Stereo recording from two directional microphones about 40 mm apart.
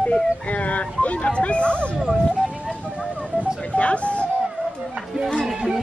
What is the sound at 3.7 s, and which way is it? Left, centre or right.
Music, left.